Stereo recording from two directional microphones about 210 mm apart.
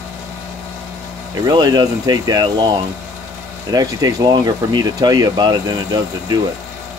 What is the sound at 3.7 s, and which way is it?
Speech, 15° right (ahead or behind).